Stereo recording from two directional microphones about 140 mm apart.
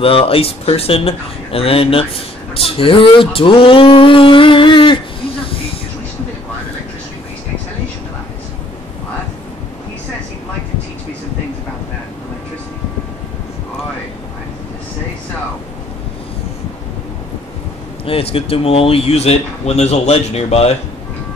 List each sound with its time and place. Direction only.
0.0 s speech: 40° left (ahead or behind)
2.5 s a sound: 40° left (ahead or behind)
18.0 s speech: 40° left (ahead or behind)